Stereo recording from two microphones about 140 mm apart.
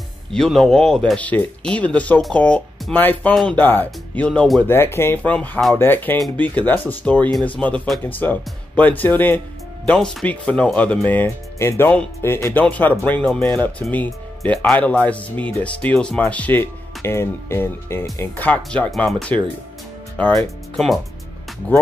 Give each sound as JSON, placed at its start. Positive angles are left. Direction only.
{"t": 0.3, "sound": "speech", "side_deg": 5}
{"t": 20.4, "sound": "speech", "side_deg": 0}